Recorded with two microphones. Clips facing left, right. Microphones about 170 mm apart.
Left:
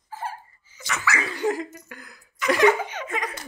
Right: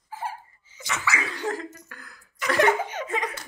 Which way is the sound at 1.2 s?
10° left (ahead or behind).